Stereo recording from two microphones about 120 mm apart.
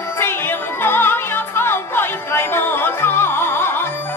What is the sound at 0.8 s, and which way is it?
Music, 20° left (ahead or behind).